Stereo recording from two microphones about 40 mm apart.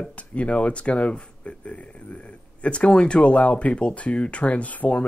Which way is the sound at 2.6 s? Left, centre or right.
Left.